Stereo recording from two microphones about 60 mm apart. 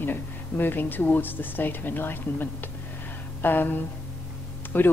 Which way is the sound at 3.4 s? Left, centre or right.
Left.